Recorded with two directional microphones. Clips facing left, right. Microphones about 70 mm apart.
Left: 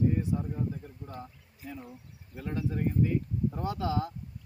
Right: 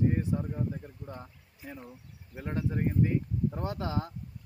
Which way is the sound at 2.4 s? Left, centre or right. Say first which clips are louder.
Even; right.